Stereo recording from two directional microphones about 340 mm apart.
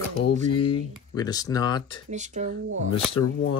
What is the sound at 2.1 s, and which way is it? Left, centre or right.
Speech, right.